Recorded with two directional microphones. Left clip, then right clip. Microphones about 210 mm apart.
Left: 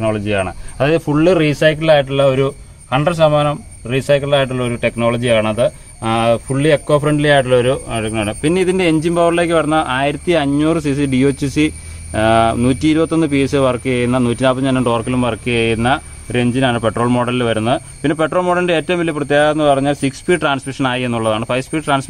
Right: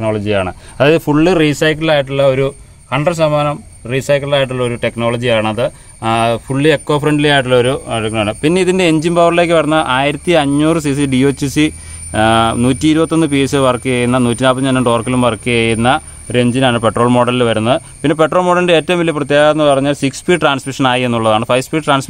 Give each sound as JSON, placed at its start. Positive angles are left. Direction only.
{"t": 0.0, "sound": "speech", "side_deg": -40}